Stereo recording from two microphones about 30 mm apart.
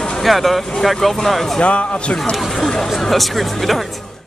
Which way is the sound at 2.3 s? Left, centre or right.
Centre.